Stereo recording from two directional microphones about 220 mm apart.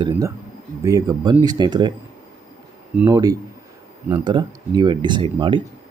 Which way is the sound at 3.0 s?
15° right (ahead or behind).